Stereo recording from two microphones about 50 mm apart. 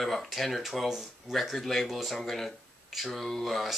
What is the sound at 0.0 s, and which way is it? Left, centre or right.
Speech, centre.